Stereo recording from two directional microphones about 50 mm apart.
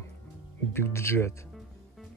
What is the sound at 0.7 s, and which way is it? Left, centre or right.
Speech, left.